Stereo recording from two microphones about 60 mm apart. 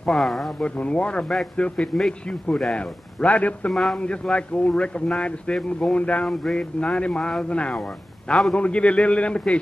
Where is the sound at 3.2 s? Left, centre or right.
Left.